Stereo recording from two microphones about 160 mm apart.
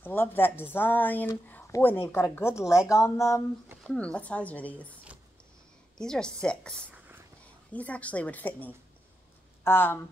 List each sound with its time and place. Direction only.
0.0 s speech: 10° left (ahead or behind)
3.8 s speech: 5° left (ahead or behind)
5.9 s a woman's voice: 5° left (ahead or behind)